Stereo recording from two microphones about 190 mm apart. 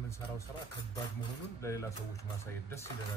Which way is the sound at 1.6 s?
15° left (ahead or behind).